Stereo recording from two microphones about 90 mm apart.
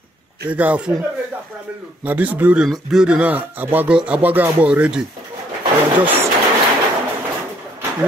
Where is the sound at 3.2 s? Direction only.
20° right (ahead or behind).